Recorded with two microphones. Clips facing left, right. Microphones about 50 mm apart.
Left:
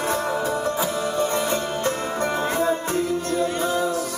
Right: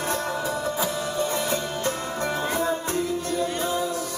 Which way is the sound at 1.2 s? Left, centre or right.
Centre.